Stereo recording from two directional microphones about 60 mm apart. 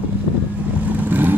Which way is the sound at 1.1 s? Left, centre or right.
Right.